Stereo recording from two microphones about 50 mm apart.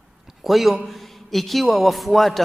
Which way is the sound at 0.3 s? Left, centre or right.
Centre.